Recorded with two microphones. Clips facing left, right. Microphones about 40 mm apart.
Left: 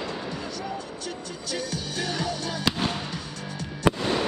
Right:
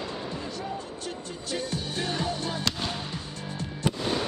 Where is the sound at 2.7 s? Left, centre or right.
Centre.